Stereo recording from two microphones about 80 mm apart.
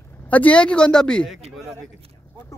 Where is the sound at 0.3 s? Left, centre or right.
Centre.